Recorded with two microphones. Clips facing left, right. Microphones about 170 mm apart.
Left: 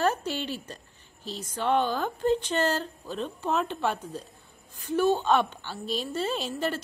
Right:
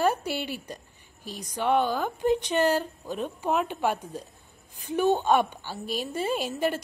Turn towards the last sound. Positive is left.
turn(degrees=-10)  # may be behind; listen again after turning